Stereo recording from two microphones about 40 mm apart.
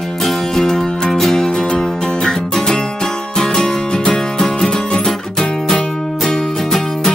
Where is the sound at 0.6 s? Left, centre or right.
Centre.